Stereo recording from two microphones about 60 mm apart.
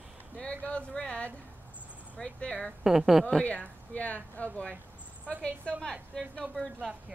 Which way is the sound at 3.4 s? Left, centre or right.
Left.